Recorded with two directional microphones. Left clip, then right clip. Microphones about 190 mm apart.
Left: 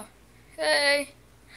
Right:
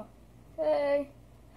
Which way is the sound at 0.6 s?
25° left (ahead or behind).